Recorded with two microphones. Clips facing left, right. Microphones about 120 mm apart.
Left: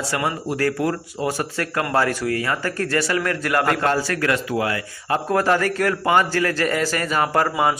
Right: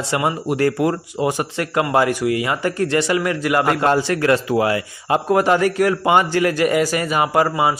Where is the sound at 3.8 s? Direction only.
25° right (ahead or behind).